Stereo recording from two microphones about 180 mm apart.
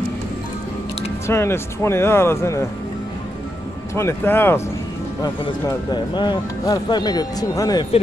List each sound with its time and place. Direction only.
1.2 s speech: 15° left (ahead or behind)
3.9 s speech: 15° left (ahead or behind)